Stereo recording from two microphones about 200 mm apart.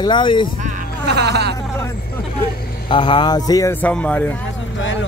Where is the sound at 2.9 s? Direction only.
25° left (ahead or behind); by 4.3 s 10° left (ahead or behind).